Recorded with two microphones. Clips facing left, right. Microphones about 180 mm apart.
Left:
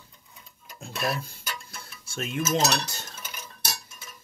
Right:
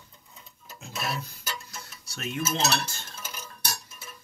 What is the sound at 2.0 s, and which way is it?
Cutlery, 50° left (ahead or behind).